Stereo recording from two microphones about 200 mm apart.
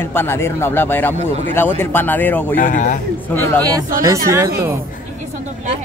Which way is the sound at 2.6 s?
40° left (ahead or behind).